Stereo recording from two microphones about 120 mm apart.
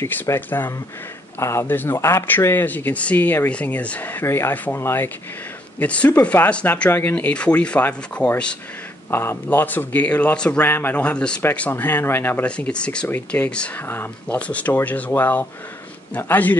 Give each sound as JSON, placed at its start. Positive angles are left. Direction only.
{"t": 0.0, "sound": "speech", "side_deg": 20}